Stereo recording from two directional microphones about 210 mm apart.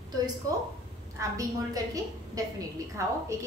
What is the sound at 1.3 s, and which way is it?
Speech, 15° right (ahead or behind).